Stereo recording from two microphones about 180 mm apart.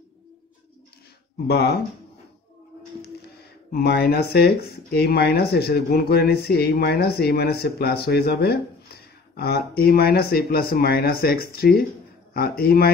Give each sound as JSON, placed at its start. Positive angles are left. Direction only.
{"t": 1.5, "sound": "speech", "side_deg": 65}
{"t": 3.7, "sound": "speech", "side_deg": 60}